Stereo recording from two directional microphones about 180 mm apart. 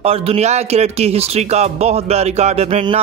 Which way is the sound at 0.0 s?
35° right (ahead or behind).